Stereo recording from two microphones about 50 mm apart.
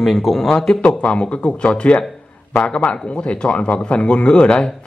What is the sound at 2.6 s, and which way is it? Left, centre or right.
Speech, centre.